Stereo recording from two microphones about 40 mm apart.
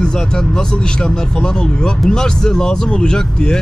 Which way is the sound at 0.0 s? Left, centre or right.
Centre.